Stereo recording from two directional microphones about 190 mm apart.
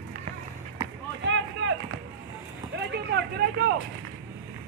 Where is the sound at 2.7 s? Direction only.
65° right (ahead or behind).